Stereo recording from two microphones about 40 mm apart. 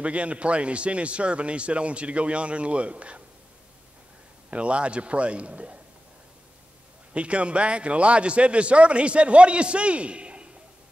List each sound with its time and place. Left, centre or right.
0.0 s a man's voice: right
4.5 s a man's voice: right
7.2 s a man's voice: right